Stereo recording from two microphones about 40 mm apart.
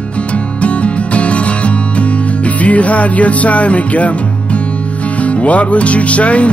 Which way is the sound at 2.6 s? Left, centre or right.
Left.